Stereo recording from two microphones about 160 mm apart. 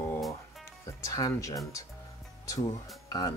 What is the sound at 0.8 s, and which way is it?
Speech, 20° left (ahead or behind).